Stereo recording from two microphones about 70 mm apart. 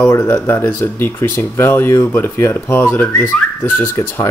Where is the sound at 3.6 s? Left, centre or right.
Left.